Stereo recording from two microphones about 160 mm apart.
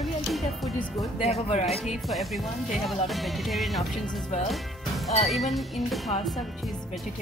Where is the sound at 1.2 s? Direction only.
40° left (ahead or behind).